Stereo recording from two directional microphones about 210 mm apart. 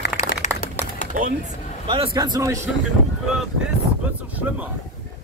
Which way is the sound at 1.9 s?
20° right (ahead or behind).